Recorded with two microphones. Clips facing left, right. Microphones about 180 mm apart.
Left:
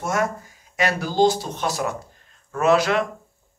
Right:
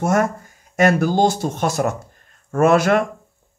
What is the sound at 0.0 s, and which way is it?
Speech, 50° right (ahead or behind).